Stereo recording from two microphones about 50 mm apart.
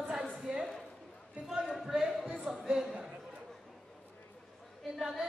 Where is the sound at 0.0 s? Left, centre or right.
Centre.